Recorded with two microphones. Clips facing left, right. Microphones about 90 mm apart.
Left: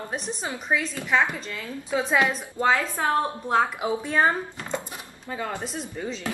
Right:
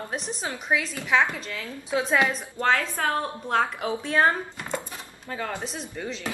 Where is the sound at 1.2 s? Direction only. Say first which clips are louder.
Even; 15° left (ahead or behind).